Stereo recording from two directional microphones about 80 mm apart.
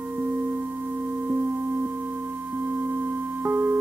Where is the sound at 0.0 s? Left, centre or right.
Right.